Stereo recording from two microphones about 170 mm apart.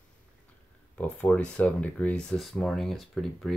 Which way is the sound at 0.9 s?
5° left (ahead or behind).